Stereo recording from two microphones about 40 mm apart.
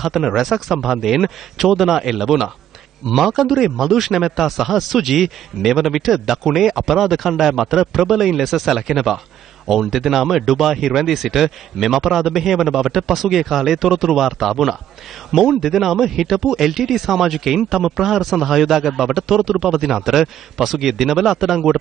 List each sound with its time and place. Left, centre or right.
0.0 s speech: centre